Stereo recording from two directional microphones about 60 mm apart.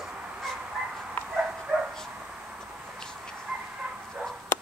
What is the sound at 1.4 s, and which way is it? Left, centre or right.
Dog, centre.